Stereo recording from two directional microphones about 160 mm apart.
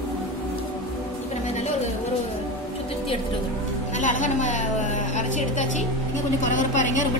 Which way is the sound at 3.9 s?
50° left (ahead or behind).